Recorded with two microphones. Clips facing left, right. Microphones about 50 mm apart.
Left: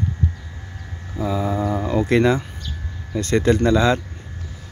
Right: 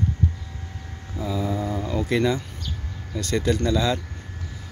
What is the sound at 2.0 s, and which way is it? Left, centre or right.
Speech, left.